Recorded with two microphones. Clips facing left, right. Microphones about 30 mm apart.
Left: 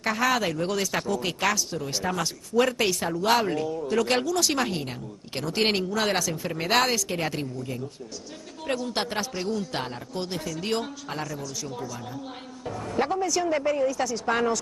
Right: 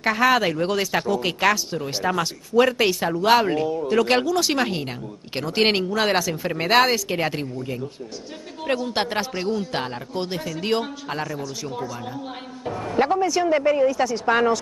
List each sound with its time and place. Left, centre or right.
0.0 s speech: right